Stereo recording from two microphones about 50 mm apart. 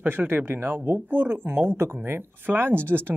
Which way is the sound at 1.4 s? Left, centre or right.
Right.